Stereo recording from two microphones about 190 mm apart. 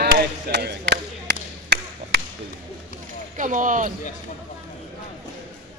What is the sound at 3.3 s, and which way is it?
Speech, 45° right (ahead or behind).